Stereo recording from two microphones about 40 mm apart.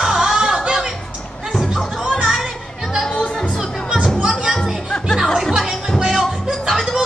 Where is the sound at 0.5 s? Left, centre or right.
Right.